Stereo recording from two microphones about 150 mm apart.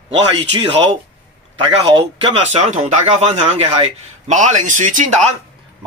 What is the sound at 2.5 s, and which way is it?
A man's voice, 45° right (ahead or behind).